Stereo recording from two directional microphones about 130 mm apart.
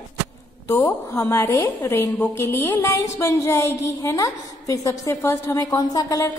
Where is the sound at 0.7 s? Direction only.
20° left (ahead or behind).